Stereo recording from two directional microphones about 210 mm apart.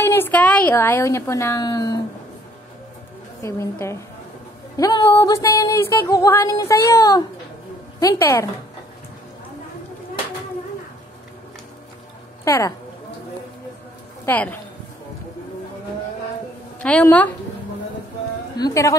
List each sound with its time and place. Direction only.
0.0 s speech: 10° left (ahead or behind)
3.4 s speech: 15° left (ahead or behind)
12.4 s speech: 15° left (ahead or behind)
14.2 s speech: 10° left (ahead or behind)
16.8 s speech: 5° left (ahead or behind)
18.6 s speech: 15° left (ahead or behind)